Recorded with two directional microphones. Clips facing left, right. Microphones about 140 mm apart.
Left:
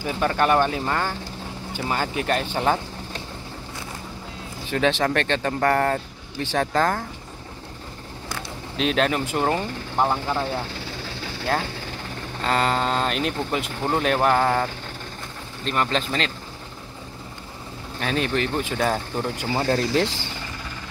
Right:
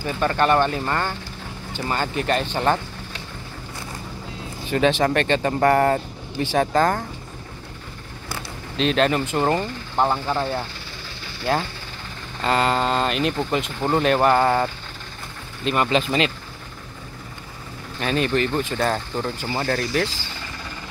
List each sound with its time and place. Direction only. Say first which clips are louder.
0.0 s speech: right 1 dB; 5° left (ahead or behind)
4.6 s speech: right 3 dB; centre (ahead or behind)
8.3 s speech: right 1 dB; centre (ahead or behind)
18.0 s speech: right 3 dB; centre (ahead or behind)
19.6 s speech: left 2 dB; 25° left (ahead or behind)